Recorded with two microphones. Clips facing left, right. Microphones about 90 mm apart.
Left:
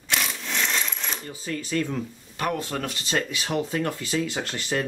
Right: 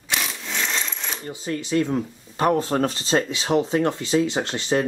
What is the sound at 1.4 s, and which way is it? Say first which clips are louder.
Speech: right 5 dB; 20° right (ahead or behind).